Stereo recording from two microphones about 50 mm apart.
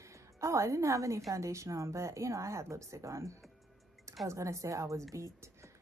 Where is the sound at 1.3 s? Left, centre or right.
Right.